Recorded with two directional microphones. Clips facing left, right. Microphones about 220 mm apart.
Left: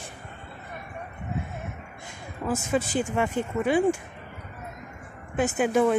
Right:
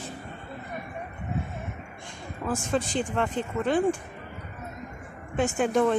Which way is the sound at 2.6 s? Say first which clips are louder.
Left 1 dB; 5° left (ahead or behind).